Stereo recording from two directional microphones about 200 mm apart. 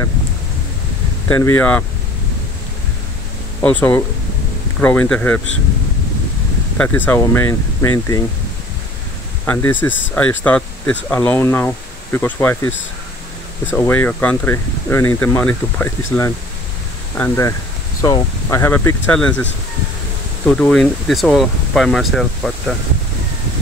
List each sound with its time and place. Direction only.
1.3 s speech: 10° left (ahead or behind)
3.6 s speech: 10° left (ahead or behind)
7.1 s speech: 10° left (ahead or behind)
9.5 s speech: 10° left (ahead or behind)
20.4 s speech: 5° left (ahead or behind)